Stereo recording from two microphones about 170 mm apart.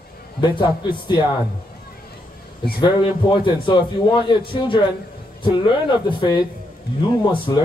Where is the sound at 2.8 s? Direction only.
25° left (ahead or behind).